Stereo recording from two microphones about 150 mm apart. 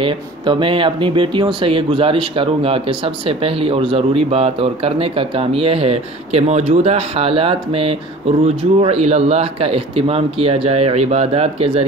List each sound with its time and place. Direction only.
0.0 s speech: 35° right (ahead or behind)